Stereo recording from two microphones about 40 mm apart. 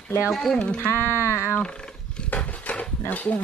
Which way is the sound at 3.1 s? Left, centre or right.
Left.